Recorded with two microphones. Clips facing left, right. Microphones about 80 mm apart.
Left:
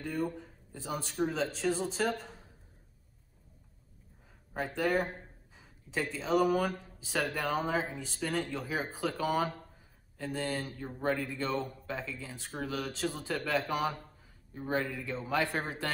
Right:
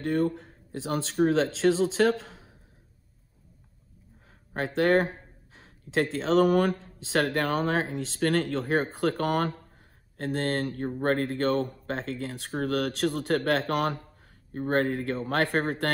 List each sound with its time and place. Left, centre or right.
0.0 s speech: right
4.6 s speech: right